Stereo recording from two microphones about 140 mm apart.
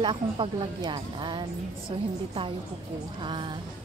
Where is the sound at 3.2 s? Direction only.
35° right (ahead or behind).